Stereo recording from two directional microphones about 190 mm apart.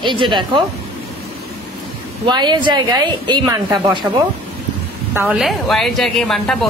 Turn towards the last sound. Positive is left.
turn(degrees=0)  # may be behind; listen again after turning